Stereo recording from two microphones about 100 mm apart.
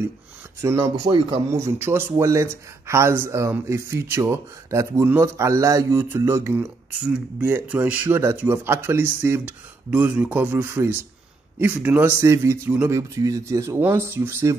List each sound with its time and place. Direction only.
0.6 s speech: 30° right (ahead or behind)
7.6 s speech: 15° right (ahead or behind); by 13.7 s 30° right (ahead or behind)
13.7 s speech: 20° right (ahead or behind)